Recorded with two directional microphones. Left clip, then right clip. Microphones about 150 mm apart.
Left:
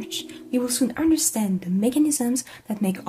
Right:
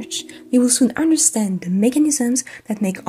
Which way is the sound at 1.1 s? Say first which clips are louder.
Right 5 dB; 30° right (ahead or behind).